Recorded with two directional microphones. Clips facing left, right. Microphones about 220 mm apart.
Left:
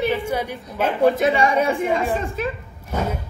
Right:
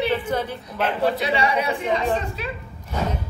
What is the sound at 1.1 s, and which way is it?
Speech, 50° left (ahead or behind).